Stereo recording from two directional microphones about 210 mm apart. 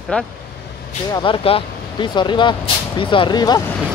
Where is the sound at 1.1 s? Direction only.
25° left (ahead or behind).